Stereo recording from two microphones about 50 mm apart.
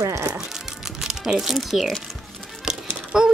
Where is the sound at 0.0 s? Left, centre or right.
Right.